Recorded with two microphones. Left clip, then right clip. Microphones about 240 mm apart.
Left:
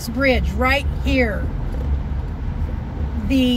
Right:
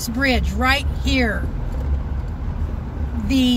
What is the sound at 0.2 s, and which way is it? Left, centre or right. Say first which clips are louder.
Speech: left 2 dB; right.